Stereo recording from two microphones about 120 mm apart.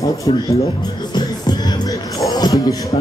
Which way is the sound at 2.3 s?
30° left (ahead or behind).